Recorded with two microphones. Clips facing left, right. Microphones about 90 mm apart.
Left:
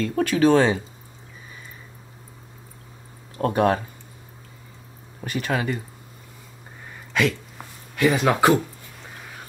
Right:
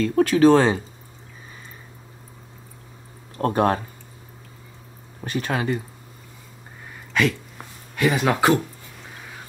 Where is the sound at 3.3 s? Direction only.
35° right (ahead or behind).